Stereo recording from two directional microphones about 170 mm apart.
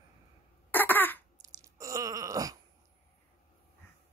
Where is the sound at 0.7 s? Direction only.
10° left (ahead or behind).